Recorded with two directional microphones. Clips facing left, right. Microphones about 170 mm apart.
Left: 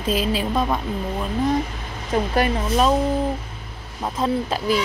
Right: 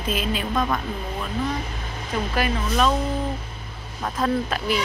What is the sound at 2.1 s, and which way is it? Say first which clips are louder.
Speech: left 4 dB; 35° left (ahead or behind).